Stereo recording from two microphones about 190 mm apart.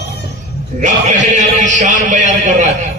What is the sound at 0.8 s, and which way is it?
A man's voice, 40° right (ahead or behind).